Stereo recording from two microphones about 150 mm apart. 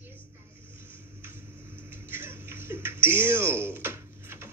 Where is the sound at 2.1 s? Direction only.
15° right (ahead or behind).